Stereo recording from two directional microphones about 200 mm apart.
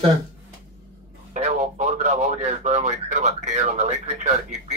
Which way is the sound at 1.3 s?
35° right (ahead or behind).